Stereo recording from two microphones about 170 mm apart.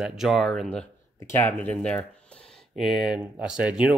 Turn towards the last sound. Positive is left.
turn(degrees=-5)  # may be behind; listen again after turning